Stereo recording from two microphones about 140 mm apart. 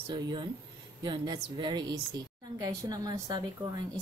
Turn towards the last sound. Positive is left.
turn(degrees=-25)  # may be behind; listen again after turning